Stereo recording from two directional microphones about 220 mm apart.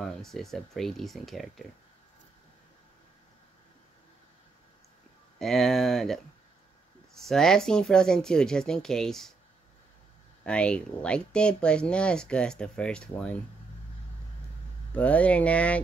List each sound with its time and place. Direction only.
0.0 s speech: centre (ahead or behind)
5.4 s speech: centre (ahead or behind)
7.2 s speech: centre (ahead or behind)
10.4 s speech: 5° left (ahead or behind)
15.0 s speech: 5° left (ahead or behind)